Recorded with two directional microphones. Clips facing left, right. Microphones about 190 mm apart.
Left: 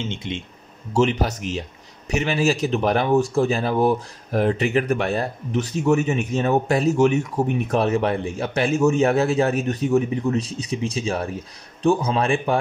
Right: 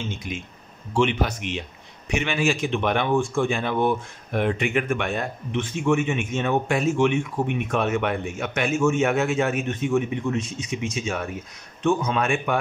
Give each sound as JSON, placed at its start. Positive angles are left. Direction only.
{"t": 0.0, "sound": "speech", "side_deg": 25}
{"t": 0.9, "sound": "speech", "side_deg": 40}